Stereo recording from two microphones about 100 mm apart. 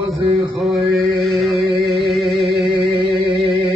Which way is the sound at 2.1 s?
Centre (ahead or behind).